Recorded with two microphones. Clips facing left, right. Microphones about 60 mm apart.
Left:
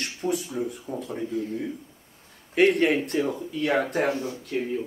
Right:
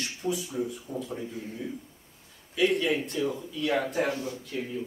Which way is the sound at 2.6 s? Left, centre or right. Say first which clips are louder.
Left 5 dB; left.